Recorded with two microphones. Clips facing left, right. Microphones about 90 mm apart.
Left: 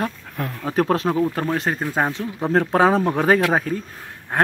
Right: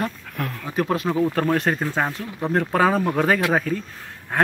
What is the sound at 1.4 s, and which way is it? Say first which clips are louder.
Speech: right 2 dB; centre (ahead or behind).